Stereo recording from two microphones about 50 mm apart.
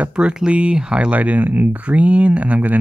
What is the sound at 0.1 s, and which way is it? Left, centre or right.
Speech, centre.